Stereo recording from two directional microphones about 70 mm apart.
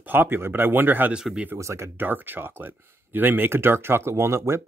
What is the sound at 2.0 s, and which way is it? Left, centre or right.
Speech, right.